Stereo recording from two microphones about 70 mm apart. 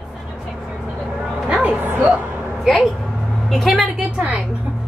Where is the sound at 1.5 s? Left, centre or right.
Centre.